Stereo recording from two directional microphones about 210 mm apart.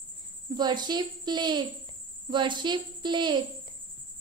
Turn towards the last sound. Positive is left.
turn(degrees=-20)  # may be behind; listen again after turning